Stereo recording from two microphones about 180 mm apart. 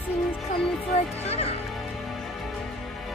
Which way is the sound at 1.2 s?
35° left (ahead or behind).